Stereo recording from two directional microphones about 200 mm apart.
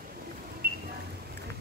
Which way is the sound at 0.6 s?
50° right (ahead or behind).